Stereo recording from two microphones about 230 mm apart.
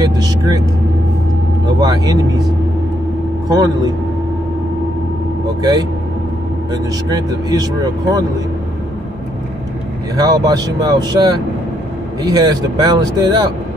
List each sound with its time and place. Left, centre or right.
0.0 s speech: centre
1.8 s speech: centre
3.4 s speech: centre
5.6 s speech: centre
10.1 s speech: centre